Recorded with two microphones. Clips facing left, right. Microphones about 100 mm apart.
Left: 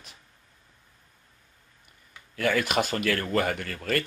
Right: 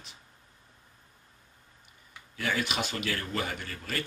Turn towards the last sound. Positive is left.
turn(degrees=55)  # may be behind; listen again after turning